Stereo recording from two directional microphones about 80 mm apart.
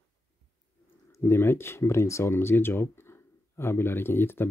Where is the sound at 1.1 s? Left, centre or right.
Left.